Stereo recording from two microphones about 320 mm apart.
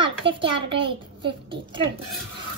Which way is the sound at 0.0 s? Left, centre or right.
Centre.